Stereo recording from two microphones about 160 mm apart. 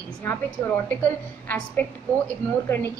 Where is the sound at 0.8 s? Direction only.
10° left (ahead or behind).